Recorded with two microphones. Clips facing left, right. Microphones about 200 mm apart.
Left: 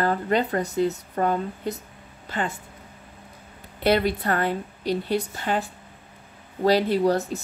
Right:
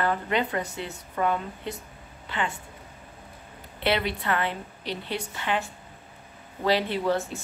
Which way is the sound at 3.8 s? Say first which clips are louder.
Left 5 dB; 40° left (ahead or behind).